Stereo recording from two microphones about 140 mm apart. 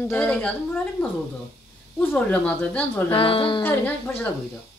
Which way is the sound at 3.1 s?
40° left (ahead or behind).